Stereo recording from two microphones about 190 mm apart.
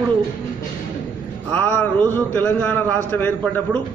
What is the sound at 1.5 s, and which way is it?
A man's voice, 10° left (ahead or behind).